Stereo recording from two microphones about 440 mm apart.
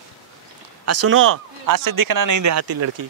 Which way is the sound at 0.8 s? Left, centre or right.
Right.